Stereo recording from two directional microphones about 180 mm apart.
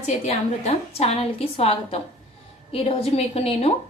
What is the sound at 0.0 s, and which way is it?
A woman's voice, 35° left (ahead or behind).